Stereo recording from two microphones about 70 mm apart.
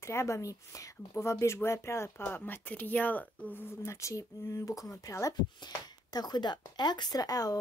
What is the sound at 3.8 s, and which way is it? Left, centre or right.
Speech, left.